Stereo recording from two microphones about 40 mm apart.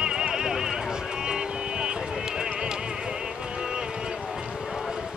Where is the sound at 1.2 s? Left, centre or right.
Centre.